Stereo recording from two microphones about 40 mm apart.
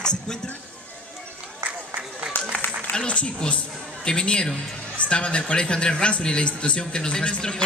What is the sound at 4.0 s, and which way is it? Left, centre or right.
A woman's voice, left.